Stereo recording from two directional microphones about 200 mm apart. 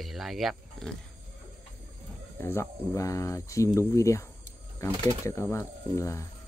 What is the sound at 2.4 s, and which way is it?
Speech, 10° left (ahead or behind).